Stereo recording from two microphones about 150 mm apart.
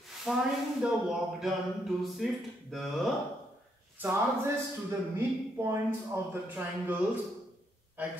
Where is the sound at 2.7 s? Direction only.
Centre (ahead or behind).